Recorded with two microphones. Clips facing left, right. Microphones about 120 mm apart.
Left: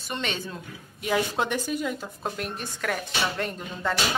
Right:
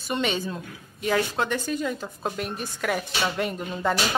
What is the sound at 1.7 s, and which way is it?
A woman's voice, 5° left (ahead or behind).